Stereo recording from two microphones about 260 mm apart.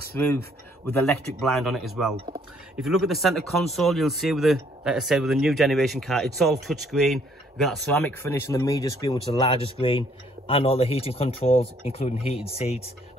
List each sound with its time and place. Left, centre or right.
0.2 s speech: centre
1.4 s speech: centre; by 12.9 s left